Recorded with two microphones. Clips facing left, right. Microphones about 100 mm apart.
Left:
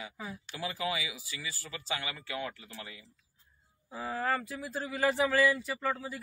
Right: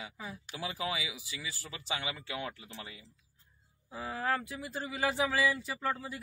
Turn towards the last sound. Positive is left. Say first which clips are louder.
# left 2 dB
turn(degrees=0)  # may be behind; listen again after turning